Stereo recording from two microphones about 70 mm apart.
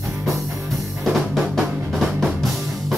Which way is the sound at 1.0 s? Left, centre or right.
Centre.